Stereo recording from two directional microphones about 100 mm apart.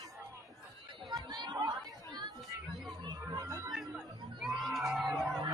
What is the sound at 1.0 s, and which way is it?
Chatter, 45° right (ahead or behind).